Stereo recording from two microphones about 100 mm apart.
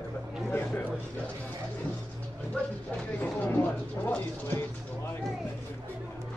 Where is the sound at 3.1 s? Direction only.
15° left (ahead or behind).